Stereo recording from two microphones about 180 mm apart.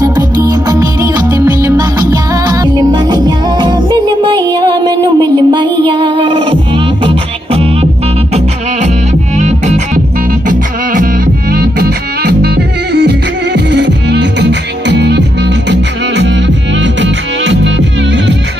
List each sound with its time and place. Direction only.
0.0 s music: 20° right (ahead or behind)
9.4 s music: 40° right (ahead or behind)
11.5 s music: 60° right (ahead or behind); by 17.7 s 90° right